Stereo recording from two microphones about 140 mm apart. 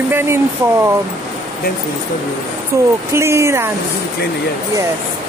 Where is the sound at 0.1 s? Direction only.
15° right (ahead or behind).